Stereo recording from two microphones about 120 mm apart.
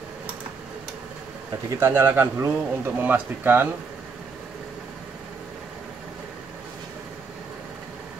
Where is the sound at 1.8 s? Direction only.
20° right (ahead or behind).